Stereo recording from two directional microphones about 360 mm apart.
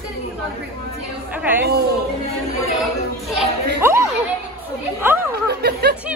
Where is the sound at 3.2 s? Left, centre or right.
Centre.